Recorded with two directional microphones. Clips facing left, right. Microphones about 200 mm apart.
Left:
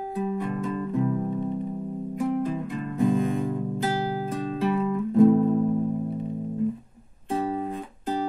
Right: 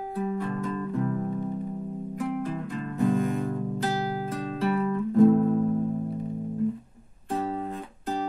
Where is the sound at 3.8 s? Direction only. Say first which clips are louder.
Left 2 dB; 10° left (ahead or behind).